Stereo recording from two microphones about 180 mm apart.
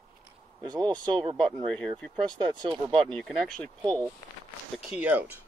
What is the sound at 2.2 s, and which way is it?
Speech, 25° right (ahead or behind).